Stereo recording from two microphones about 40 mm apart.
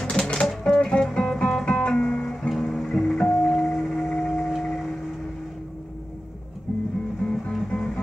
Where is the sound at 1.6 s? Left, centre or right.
Left.